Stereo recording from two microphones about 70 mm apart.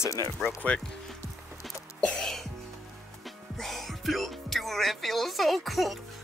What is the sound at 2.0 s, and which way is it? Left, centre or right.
Music, centre.